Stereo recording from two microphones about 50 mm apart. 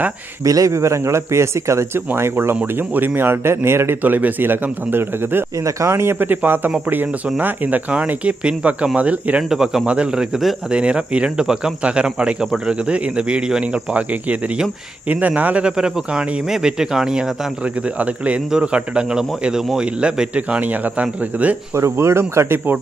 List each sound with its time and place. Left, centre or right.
0.4 s speech: right
2.0 s a man's voice: right
2.6 s a man's voice: right
4.0 s a man's voice: right
5.6 s speech: right
6.1 s a man's voice: right
9.5 s a man's voice: centre
15.0 s a man's voice: right; by 17.3 s centre
17.9 s a man's voice: right
21.7 s a man's voice: right